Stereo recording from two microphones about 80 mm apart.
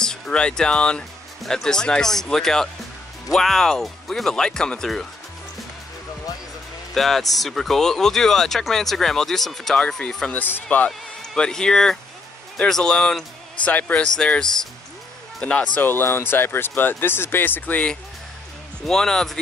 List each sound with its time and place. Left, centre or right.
0.0 s speech: centre
6.9 s speech: centre
10.3 s speech: left
10.9 s speech: centre
18.9 s speech: centre